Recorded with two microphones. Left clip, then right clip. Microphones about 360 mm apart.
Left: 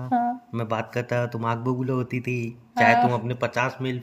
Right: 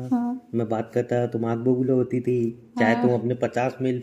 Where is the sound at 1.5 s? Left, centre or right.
Left.